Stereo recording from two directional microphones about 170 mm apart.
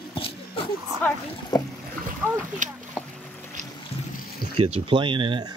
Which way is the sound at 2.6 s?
45° right (ahead or behind).